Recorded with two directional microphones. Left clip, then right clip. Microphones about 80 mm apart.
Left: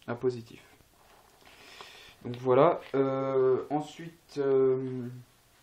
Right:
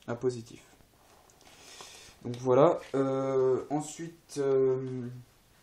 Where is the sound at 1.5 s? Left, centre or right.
Right.